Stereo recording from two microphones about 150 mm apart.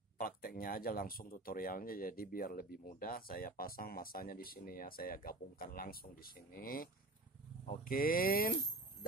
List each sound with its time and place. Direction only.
0.2 s speech: 80° left